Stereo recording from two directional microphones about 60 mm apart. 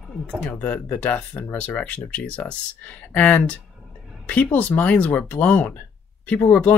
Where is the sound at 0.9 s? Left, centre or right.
Left.